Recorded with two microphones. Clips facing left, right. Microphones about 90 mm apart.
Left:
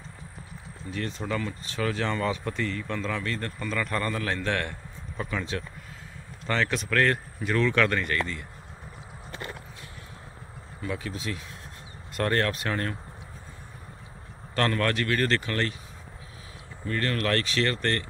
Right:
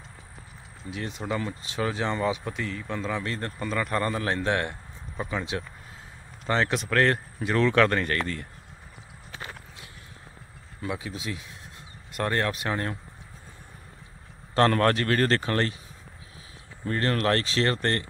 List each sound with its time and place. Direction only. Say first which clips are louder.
0.8 s speech: even; 15° right (ahead or behind); by 8.2 s 35° right (ahead or behind)
10.9 s speech: even; 15° right (ahead or behind)
14.8 s speech: right 3 dB; 35° right (ahead or behind)
16.8 s speech: right 3 dB; 30° right (ahead or behind)